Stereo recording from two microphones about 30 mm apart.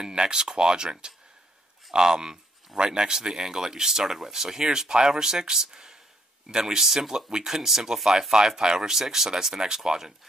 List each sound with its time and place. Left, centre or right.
0.1 s speech: right